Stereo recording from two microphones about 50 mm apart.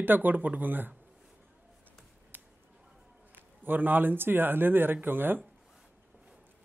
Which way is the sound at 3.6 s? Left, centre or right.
Right.